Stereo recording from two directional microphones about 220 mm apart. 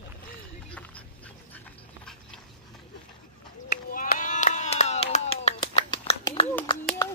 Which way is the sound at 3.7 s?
40° left (ahead or behind).